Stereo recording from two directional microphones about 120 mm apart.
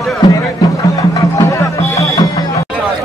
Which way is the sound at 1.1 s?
30° left (ahead or behind).